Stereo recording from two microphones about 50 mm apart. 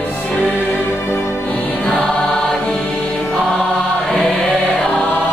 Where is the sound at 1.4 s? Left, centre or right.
Left.